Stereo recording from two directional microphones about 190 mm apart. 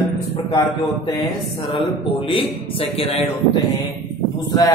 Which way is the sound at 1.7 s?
25° left (ahead or behind).